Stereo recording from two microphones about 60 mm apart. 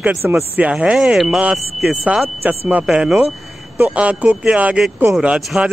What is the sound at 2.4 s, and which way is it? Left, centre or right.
Speech, right.